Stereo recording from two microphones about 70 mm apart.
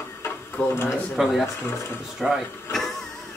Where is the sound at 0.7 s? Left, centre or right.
Left.